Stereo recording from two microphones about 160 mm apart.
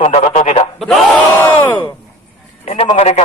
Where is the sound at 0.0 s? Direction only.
45° left (ahead or behind).